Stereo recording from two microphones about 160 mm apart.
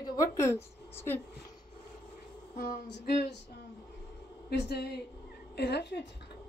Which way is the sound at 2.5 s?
80° left.